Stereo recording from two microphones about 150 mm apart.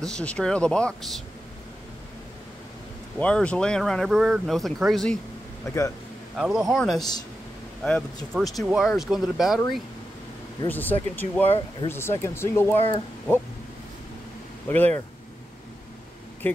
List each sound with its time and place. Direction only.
0.0 s speech: 5° left (ahead or behind)
3.2 s speech: 10° left (ahead or behind)
6.3 s speech: centre (ahead or behind)
10.7 s speech: 10° left (ahead or behind)
14.7 s speech: 10° left (ahead or behind)
16.4 s speech: 15° left (ahead or behind)